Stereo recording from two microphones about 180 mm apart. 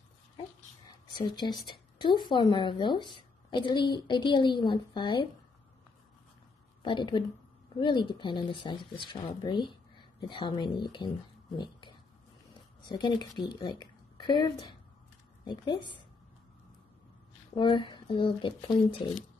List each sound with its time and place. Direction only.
1.1 s speech: 25° left (ahead or behind)
6.8 s a woman's voice: 25° left (ahead or behind)
11.5 s dog: 25° left (ahead or behind)
12.8 s a woman's voice: 20° left (ahead or behind)
17.6 s speech: 25° left (ahead or behind)